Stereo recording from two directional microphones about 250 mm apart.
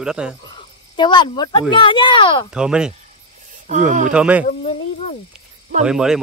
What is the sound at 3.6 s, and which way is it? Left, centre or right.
Speech, right.